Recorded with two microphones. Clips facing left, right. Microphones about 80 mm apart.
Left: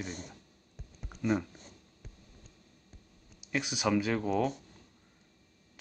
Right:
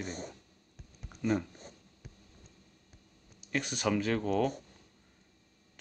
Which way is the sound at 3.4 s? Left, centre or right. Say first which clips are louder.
Left 1 dB; centre.